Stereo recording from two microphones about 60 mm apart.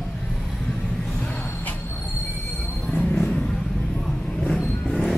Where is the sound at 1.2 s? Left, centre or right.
Left.